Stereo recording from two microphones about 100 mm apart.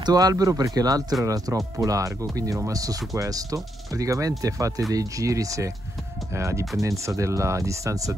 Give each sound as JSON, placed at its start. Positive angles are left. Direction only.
{"t": 0.0, "sound": "speech", "side_deg": -40}